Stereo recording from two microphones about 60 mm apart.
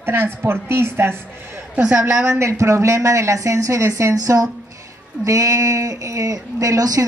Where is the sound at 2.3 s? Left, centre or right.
Right.